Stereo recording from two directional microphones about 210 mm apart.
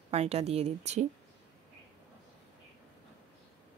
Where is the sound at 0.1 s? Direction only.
30° right (ahead or behind).